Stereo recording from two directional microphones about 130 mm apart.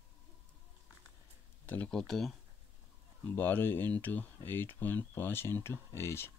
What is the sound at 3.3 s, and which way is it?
Speech, 15° left (ahead or behind).